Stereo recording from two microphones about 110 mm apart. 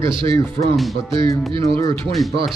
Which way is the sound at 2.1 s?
Centre (ahead or behind).